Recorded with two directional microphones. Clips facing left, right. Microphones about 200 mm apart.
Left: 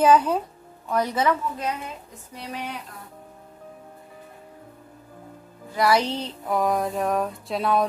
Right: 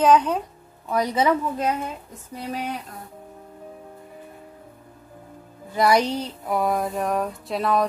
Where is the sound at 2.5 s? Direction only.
40° right (ahead or behind).